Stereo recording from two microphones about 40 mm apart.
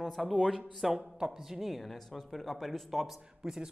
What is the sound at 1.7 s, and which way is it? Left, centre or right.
A woman's voice, centre.